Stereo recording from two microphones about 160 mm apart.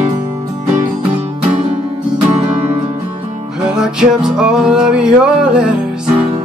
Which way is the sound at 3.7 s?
5° right (ahead or behind).